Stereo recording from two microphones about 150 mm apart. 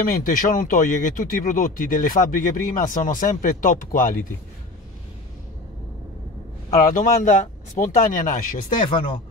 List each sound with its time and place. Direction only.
0.0 s speech: 70° left (ahead or behind)
6.9 s speech: 60° left (ahead or behind)
8.8 s speech: 35° left (ahead or behind)